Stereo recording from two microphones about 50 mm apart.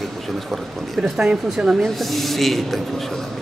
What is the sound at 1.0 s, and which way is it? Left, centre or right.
Speech, centre.